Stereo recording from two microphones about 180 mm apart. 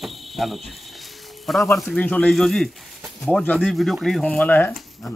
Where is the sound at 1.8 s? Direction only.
5° left (ahead or behind).